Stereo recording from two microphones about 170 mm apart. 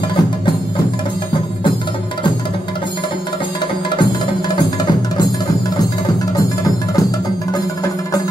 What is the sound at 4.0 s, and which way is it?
Music, 25° left (ahead or behind).